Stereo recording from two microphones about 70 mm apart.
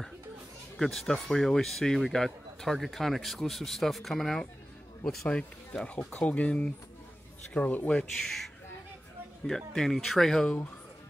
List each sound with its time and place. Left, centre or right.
0.7 s speech: centre
9.8 s speech: centre